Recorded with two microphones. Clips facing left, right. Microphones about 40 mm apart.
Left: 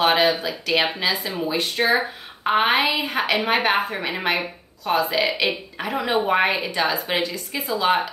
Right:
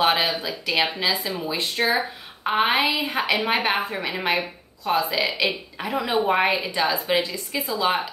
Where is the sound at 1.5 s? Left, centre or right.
Left.